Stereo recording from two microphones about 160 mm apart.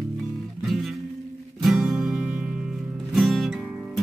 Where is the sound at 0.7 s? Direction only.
Centre (ahead or behind).